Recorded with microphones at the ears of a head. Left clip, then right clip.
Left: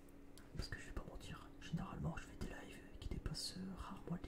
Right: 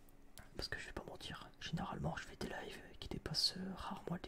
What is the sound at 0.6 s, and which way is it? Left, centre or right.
Whispering, right.